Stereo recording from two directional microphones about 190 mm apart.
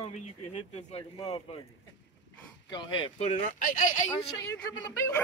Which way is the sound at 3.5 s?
45° left (ahead or behind).